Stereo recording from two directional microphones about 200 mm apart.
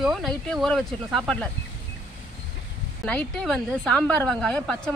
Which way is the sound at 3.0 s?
5° left (ahead or behind).